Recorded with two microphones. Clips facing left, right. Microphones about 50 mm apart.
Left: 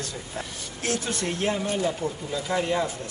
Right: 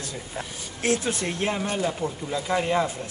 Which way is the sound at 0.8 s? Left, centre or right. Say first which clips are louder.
Right 3 dB; right.